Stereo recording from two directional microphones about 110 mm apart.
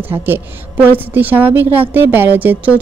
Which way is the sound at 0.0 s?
20° right (ahead or behind).